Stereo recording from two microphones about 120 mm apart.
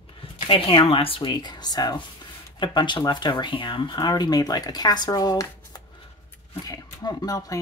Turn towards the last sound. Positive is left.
turn(degrees=30)  # may be behind; listen again after turning